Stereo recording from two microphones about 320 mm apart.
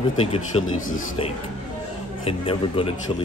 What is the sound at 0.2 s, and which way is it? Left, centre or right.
Speech, centre.